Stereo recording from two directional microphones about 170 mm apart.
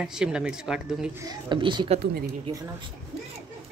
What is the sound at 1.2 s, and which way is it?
Speech, 30° right (ahead or behind).